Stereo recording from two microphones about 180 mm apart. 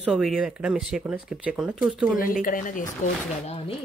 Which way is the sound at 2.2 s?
50° left (ahead or behind).